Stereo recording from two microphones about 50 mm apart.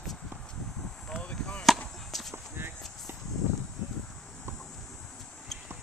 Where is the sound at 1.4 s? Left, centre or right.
Centre.